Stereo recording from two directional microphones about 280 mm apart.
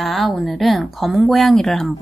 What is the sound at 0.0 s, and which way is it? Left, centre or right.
Speech, centre.